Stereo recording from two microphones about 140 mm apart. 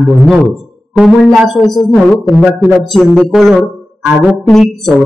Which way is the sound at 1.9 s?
20° left (ahead or behind).